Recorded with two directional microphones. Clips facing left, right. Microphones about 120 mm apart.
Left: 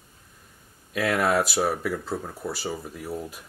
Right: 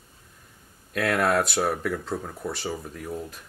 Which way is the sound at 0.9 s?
Centre (ahead or behind).